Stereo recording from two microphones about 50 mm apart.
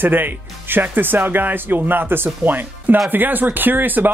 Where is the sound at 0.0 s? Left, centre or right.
Right.